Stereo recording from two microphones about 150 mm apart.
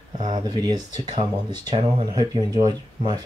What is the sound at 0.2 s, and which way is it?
Speech, 30° right (ahead or behind).